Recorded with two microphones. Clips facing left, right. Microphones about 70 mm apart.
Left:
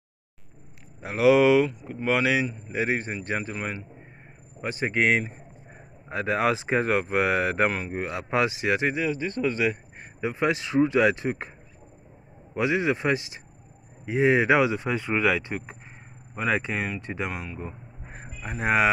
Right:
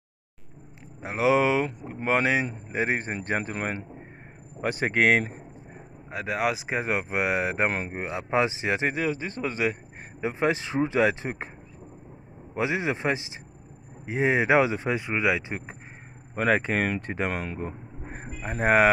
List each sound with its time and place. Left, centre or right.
1.0 s a man's voice: right
6.0 s speech: centre
7.7 s speech: right
12.5 s speech: right
15.0 s speech: centre
16.3 s speech: right
16.7 s speech: right
17.0 s a man's voice: right
17.4 s vehicle: right
18.2 s speech: right